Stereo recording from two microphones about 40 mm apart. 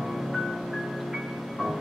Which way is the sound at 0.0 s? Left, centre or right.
Centre.